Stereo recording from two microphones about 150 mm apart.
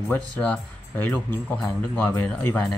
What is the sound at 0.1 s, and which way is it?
Speech, 10° left (ahead or behind).